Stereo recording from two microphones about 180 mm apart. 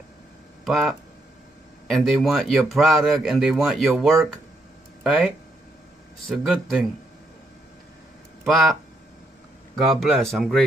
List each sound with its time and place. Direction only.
0.7 s speech: centre (ahead or behind)
9.8 s speech: centre (ahead or behind)